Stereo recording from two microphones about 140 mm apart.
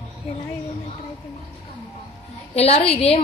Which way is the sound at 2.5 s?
45° left (ahead or behind).